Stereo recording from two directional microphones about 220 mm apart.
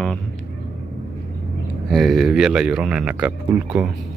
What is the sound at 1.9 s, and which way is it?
Speech, centre (ahead or behind).